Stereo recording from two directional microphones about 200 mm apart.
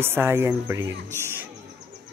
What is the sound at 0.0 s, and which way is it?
Speech, 10° right (ahead or behind).